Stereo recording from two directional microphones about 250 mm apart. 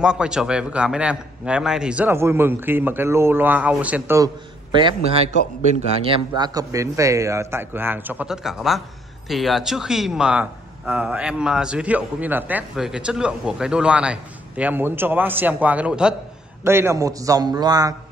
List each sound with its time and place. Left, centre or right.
0.0 s a man's voice: centre
4.7 s a man's voice: right